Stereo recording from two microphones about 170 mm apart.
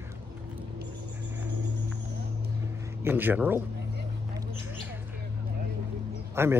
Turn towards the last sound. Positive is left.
turn(degrees=-15)  # may be behind; listen again after turning